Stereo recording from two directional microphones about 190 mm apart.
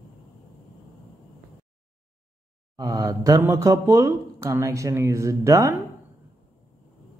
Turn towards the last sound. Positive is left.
turn(degrees=-15)  # may be behind; listen again after turning